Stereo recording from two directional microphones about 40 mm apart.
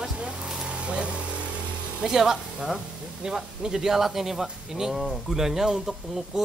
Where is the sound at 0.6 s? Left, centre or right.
Right.